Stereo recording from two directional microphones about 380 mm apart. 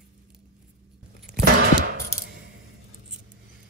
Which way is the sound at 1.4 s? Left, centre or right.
Right.